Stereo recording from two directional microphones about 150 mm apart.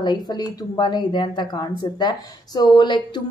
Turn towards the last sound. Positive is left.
turn(degrees=30)  # may be behind; listen again after turning